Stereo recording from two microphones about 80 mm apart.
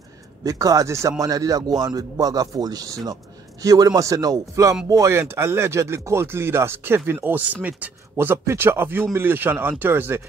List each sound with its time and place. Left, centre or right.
0.4 s a man's voice: right
1.2 s a man's voice: right